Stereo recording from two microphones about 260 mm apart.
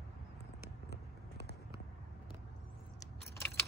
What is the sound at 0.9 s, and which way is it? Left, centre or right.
Vehicle, left.